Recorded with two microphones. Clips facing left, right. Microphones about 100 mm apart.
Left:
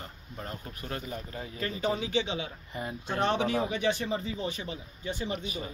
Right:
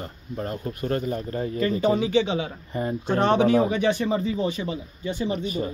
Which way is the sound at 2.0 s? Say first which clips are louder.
Right 8 dB; 90° right.